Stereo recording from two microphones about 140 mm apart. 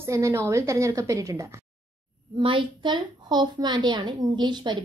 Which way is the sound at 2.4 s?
35° right (ahead or behind).